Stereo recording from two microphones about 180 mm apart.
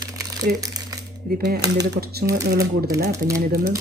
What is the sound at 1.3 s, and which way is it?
Speech, 60° right (ahead or behind).